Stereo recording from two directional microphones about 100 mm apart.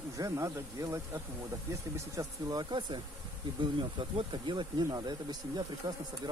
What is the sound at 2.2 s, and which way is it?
Speech, 35° right (ahead or behind).